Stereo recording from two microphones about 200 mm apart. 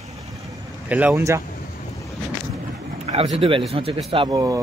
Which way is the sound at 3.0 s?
30° right (ahead or behind).